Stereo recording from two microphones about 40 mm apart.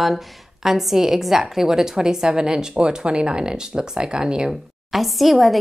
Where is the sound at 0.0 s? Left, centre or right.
Centre.